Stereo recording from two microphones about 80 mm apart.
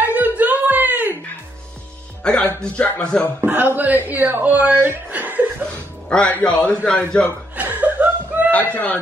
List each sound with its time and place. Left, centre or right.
0.0 s a sound: right
2.2 s speech: centre
3.4 s speech: right
6.0 s a man's voice: centre
7.5 s chuckle: right